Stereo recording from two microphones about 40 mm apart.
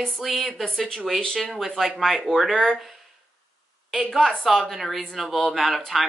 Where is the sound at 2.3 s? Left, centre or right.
Left.